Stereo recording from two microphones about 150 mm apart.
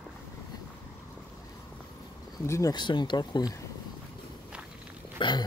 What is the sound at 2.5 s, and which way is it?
Speech, 25° left (ahead or behind).